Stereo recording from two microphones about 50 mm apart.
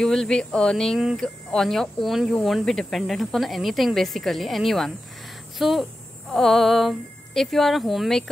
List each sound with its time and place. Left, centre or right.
0.0 s speech: centre
0.9 s speech: centre
1.2 s speech: centre